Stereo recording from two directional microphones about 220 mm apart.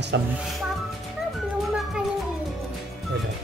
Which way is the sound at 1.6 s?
Centre (ahead or behind).